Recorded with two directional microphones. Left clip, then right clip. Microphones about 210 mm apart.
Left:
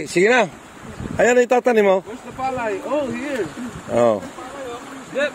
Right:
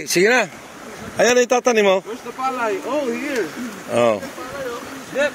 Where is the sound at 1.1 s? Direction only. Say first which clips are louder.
Even; 20° left (ahead or behind).